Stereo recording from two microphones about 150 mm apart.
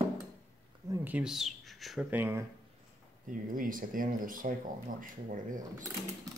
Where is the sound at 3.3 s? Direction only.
65° right (ahead or behind).